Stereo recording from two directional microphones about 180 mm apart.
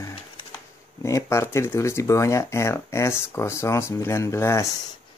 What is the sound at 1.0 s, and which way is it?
Speech, 15° left (ahead or behind).